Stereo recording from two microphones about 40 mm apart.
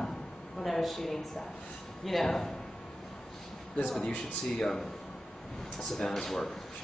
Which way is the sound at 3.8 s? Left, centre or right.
Centre.